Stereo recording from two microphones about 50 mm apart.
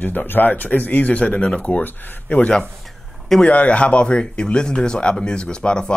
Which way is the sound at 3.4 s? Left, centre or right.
Left.